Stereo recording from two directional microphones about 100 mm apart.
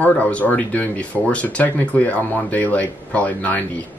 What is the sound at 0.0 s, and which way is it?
Speech, 15° left (ahead or behind).